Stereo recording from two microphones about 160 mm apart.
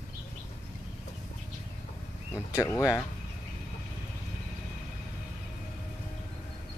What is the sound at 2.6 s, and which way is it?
Speech, 20° left (ahead or behind).